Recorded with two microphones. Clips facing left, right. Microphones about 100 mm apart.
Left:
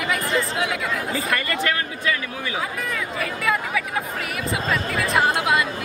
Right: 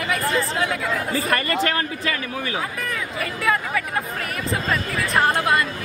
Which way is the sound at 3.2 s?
Centre (ahead or behind).